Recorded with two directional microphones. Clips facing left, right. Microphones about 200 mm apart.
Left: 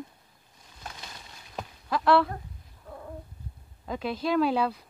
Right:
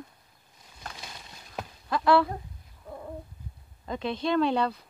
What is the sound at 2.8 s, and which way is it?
Dog, 5° right (ahead or behind).